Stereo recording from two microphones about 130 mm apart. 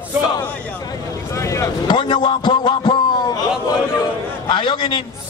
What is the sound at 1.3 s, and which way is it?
Speech, 25° left (ahead or behind).